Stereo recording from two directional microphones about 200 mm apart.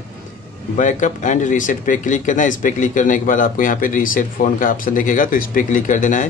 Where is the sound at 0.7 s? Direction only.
40° left (ahead or behind).